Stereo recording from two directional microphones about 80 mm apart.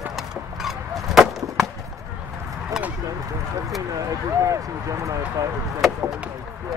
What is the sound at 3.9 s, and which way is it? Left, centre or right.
Speech, right.